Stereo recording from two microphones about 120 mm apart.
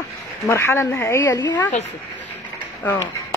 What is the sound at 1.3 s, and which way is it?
Speech, 35° left (ahead or behind).